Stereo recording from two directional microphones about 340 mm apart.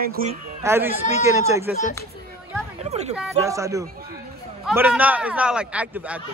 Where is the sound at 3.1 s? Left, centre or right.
Centre.